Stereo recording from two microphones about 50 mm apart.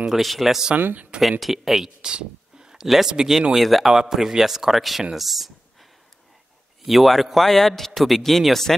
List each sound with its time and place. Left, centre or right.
0.0 s a man's voice: centre
0.7 s speech: right
1.4 s a man's voice: centre
5.1 s a sound: centre
6.8 s a man's voice: centre